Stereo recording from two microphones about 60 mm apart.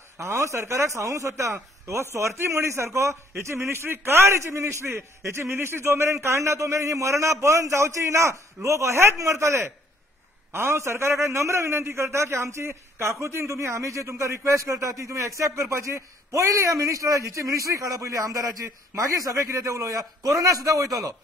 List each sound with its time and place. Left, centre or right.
0.2 s a man's voice: right